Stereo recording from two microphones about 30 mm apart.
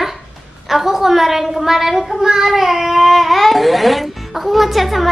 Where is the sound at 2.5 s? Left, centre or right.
Centre.